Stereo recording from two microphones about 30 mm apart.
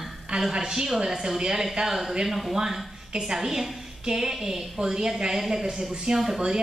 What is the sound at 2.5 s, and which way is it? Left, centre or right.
Speech, centre.